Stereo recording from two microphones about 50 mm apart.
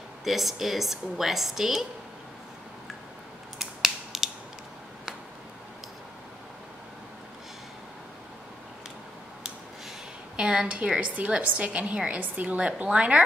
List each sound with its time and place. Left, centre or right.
0.2 s a woman's voice: centre
3.5 s scissors: centre
10.3 s a sound: centre
11.0 s a woman's voice: right